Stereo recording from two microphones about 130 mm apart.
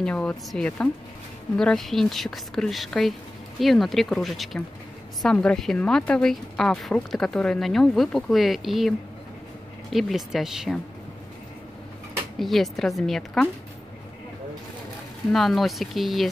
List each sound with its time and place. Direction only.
0.0 s speech: 10° left (ahead or behind)
12.4 s speech: centre (ahead or behind)
15.3 s speech: centre (ahead or behind)